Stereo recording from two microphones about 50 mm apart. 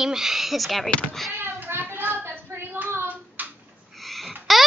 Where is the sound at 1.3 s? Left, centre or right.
Right.